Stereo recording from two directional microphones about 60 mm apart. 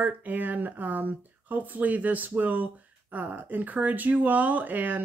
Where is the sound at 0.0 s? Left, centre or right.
Right.